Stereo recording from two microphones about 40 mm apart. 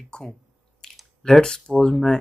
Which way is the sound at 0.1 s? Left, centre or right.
Left.